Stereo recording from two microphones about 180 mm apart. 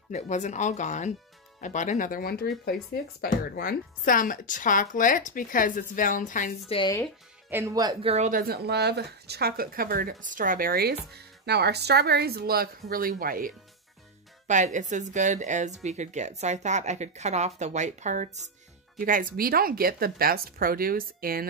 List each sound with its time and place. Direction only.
0.1 s speech: 40° left (ahead or behind)
7.4 s speech: 15° right (ahead or behind)
8.1 s speech: 40° right (ahead or behind)
8.4 s speech: 60° right (ahead or behind)
14.5 s speech: 40° right (ahead or behind)